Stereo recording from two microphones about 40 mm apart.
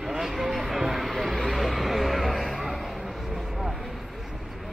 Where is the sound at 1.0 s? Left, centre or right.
Centre.